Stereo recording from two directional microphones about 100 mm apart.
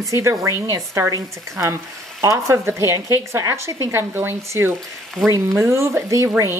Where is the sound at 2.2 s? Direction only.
35° right (ahead or behind).